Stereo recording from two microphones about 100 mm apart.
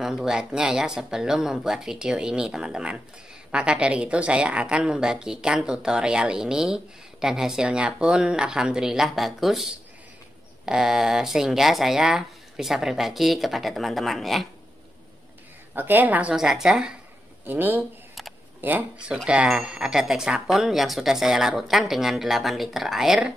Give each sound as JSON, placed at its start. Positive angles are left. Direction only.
{"t": 0.0, "sound": "a woman's voice", "side_deg": -5}
{"t": 15.7, "sound": "a woman's voice", "side_deg": -20}
{"t": 17.5, "sound": "a woman's voice", "side_deg": -20}